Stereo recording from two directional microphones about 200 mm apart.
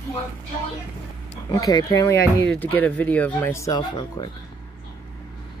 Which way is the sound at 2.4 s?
5° left (ahead or behind).